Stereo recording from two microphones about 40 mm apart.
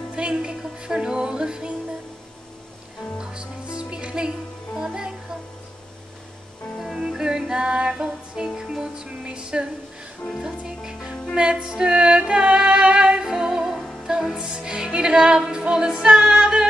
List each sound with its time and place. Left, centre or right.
0.1 s music: right
3.2 s music: right
6.8 s music: centre; by 9.7 s right
10.8 s music: centre
13.2 s music: centre